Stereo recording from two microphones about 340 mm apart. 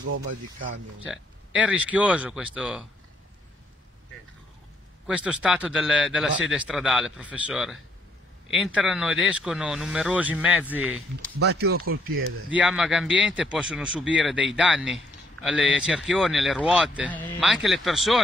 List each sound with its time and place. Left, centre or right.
0.0 s speech: right
1.0 s speech: centre
5.0 s speech: centre
11.5 s speech: right
12.4 s speech: centre